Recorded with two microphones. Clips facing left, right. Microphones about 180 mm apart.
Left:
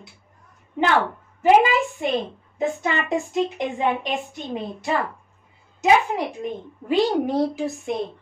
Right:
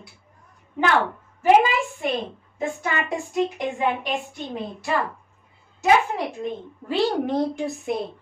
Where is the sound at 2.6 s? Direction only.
20° left (ahead or behind).